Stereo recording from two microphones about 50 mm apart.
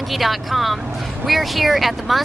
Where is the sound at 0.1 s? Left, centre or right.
Centre.